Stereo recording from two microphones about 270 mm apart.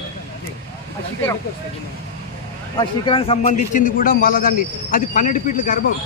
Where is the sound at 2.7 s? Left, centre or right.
Centre.